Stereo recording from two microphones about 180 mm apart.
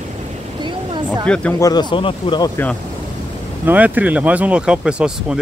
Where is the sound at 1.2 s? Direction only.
5° left (ahead or behind).